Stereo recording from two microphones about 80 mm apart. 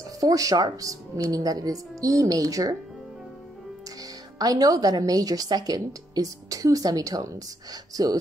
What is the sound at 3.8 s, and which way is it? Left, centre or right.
Speech, right.